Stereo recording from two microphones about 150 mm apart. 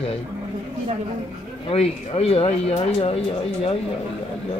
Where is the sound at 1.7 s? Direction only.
40° left (ahead or behind).